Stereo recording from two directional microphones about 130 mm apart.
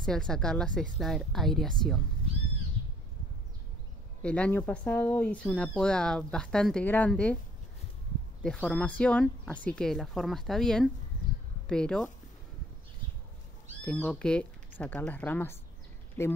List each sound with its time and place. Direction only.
0.0 s a woman's voice: 5° left (ahead or behind)
4.2 s speech: 10° left (ahead or behind)
8.5 s a woman's voice: 5° left (ahead or behind)
13.8 s speech: 10° left (ahead or behind)